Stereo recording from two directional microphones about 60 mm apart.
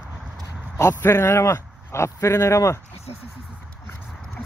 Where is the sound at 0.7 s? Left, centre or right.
Left.